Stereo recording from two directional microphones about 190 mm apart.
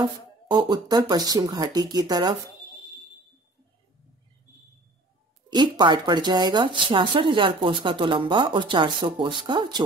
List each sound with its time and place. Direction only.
0.5 s speech: 20° right (ahead or behind)
5.5 s speech: 20° right (ahead or behind)